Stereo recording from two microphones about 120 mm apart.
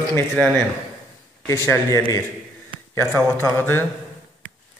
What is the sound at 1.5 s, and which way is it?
A man's voice, 25° left (ahead or behind).